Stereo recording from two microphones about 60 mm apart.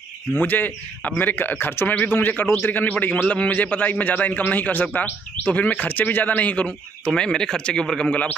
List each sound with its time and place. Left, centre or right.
0.3 s a man's voice: left
7.1 s speech: centre
8.1 s a man's voice: left